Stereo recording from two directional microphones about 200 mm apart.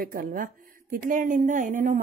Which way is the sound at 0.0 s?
45° right (ahead or behind).